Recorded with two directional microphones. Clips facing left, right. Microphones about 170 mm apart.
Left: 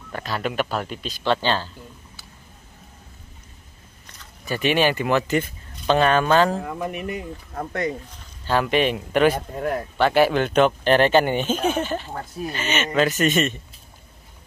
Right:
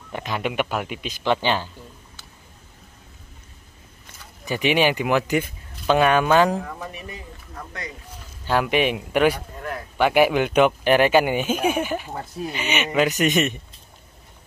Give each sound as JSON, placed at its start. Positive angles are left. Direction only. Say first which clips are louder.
{"t": 0.1, "sound": "speech", "louder": "even", "side_deg": -20}
{"t": 4.2, "sound": "speech", "louder": "even", "side_deg": -15}
{"t": 8.5, "sound": "speech", "louder": "even", "side_deg": -10}
{"t": 9.3, "sound": "speech", "louder": "left 6 dB", "side_deg": 45}
{"t": 9.9, "sound": "speech", "louder": "right 1 dB", "side_deg": -15}
{"t": 12.5, "sound": "speech", "louder": "even", "side_deg": -15}